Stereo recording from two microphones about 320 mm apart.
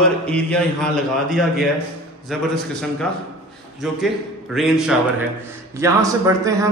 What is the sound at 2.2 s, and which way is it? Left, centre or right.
Speech, centre.